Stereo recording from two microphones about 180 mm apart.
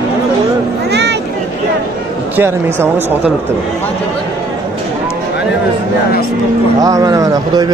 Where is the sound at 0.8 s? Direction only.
70° right (ahead or behind).